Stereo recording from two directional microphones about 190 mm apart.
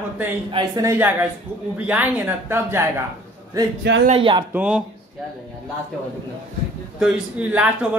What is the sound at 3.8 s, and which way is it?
Speech, 65° right (ahead or behind).